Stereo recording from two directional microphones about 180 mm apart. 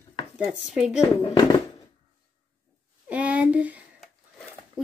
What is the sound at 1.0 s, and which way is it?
Speech, 30° left (ahead or behind).